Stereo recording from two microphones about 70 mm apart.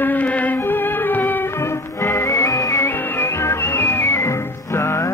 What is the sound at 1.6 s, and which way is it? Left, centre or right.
Music, left.